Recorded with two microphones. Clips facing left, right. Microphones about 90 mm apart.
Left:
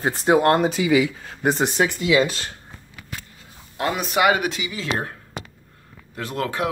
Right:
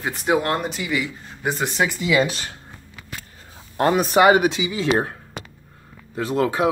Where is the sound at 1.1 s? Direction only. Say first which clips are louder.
Left 1 dB; 90° left.